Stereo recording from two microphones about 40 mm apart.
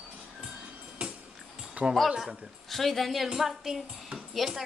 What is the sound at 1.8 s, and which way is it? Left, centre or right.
Speech, right.